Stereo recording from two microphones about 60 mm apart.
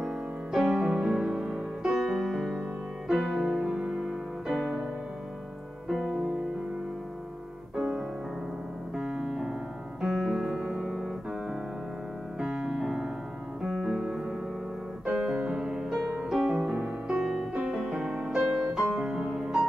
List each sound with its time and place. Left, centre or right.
0.0 s music: centre
3.4 s music: centre
5.9 s music: centre
7.7 s music: centre
10.6 s music: centre
12.4 s piano: centre
13.6 s music: centre
15.0 s keyboard: centre
15.9 s music: centre